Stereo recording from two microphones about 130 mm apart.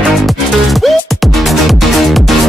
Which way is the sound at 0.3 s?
Centre (ahead or behind).